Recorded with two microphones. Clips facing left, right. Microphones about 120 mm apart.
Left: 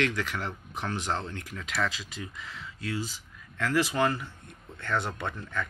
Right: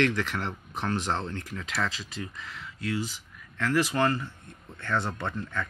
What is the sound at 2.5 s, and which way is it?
Speech, 20° left (ahead or behind).